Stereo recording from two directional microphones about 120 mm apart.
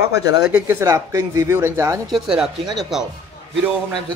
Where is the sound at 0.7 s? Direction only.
25° right (ahead or behind).